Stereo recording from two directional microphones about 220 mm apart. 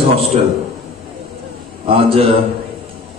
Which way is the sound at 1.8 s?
25° right (ahead or behind).